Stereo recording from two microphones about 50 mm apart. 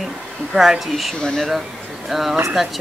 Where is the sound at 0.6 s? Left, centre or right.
Centre.